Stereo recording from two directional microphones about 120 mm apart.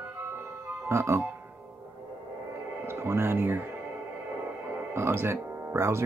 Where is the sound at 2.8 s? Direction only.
20° right (ahead or behind).